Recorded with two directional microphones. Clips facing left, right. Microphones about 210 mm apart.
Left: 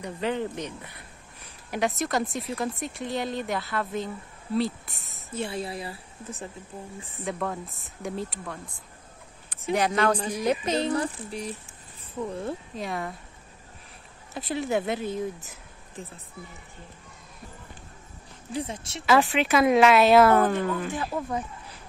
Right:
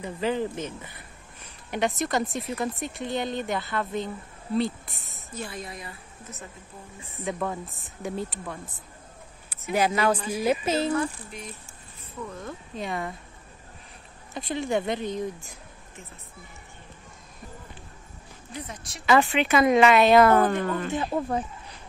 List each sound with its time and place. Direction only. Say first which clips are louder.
0.0 s speech: right 2 dB; centre (ahead or behind)
5.3 s a woman's voice: left 5 dB; 25° left (ahead or behind)
7.2 s speech: right 1 dB; centre (ahead or behind)
9.7 s speech: even; 5° right (ahead or behind)
10.9 s a woman's voice: even; 35° left (ahead or behind)
12.7 s speech: right 1 dB; centre (ahead or behind)
14.3 s speech: even; centre (ahead or behind)
18.5 s a woman's voice: left 7 dB; 30° left (ahead or behind)
19.0 s speech: even; centre (ahead or behind)
20.9 s speech: right 3 dB; 25° right (ahead or behind)